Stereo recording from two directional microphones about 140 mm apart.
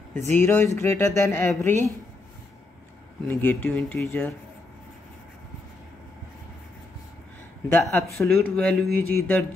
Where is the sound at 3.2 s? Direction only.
10° left (ahead or behind).